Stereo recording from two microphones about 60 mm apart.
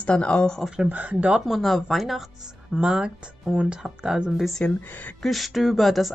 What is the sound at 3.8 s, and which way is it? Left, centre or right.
Speech, centre.